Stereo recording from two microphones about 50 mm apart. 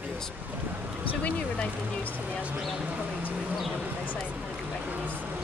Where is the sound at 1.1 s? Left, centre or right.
Left.